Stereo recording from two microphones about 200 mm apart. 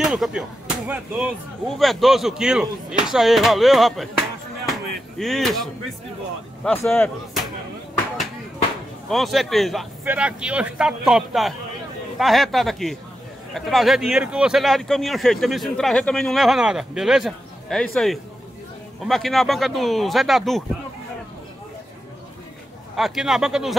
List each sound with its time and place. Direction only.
0.0 s speech: centre (ahead or behind)
5.2 s speech: centre (ahead or behind)
9.1 s speech: centre (ahead or behind)
22.9 s speech: centre (ahead or behind)